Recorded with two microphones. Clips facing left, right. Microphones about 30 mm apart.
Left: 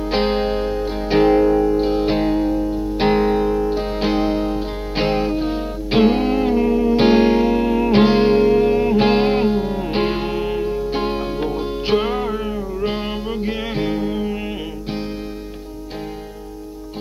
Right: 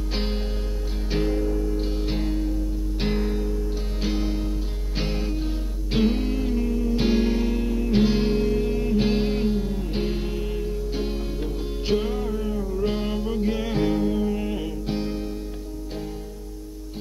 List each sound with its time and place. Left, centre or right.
0.0 s music: left
1.8 s music: left